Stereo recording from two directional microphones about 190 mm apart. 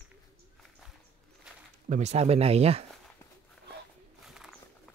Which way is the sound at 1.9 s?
35° right (ahead or behind).